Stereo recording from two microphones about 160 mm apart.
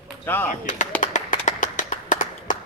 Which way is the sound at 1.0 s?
55° left (ahead or behind).